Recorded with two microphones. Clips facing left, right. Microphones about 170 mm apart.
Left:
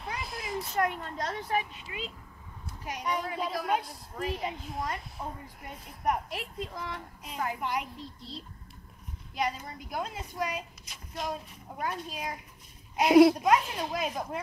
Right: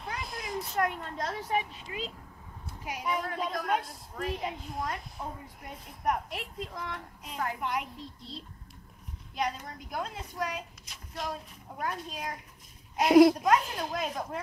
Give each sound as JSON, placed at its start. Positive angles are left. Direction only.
{"t": 0.0, "sound": "speech", "side_deg": 0}